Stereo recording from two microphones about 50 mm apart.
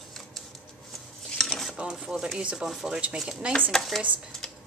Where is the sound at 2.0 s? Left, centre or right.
Centre.